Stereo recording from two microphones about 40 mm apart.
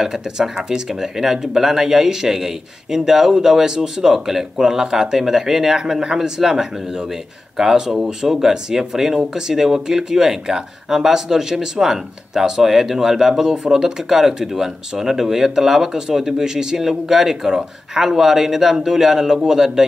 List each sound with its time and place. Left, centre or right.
0.0 s speech: centre